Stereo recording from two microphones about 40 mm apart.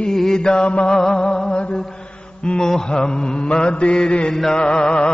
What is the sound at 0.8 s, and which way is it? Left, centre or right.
Music, centre.